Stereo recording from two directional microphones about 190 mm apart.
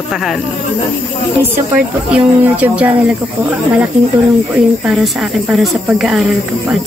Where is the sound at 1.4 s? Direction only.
10° right (ahead or behind).